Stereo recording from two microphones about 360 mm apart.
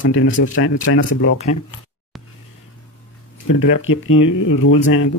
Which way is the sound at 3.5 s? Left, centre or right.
Left.